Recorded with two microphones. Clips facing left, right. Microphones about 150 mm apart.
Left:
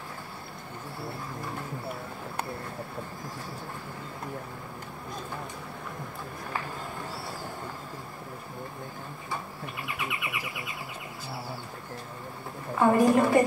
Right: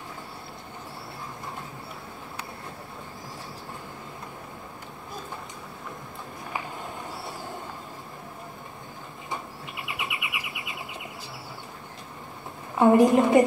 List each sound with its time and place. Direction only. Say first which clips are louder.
9.3 s bird: right 1 dB; 20° right (ahead or behind)
12.7 s a woman's voice: right 3 dB; 20° right (ahead or behind)